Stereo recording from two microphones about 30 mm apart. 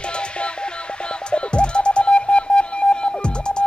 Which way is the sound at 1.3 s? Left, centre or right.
Left.